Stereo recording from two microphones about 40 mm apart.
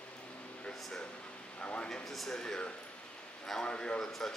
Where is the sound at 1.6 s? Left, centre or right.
Left.